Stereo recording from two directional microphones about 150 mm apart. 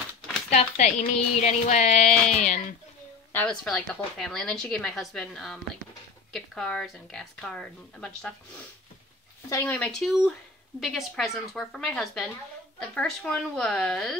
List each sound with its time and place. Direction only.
0.5 s speech: 50° left (ahead or behind)
3.3 s a woman's voice: 5° left (ahead or behind)
9.5 s a woman's voice: 15° left (ahead or behind)